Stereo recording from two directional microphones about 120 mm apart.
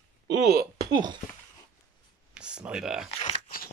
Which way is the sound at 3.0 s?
65° left (ahead or behind).